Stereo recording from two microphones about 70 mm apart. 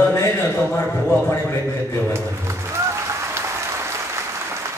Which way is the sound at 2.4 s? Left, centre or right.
Right.